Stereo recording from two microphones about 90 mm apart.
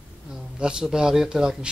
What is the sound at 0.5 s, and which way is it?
Speech, 10° right (ahead or behind).